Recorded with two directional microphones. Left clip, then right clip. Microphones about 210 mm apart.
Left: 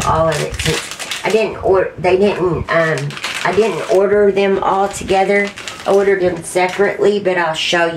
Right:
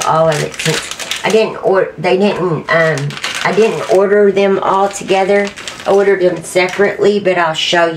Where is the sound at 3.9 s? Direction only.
25° right (ahead or behind).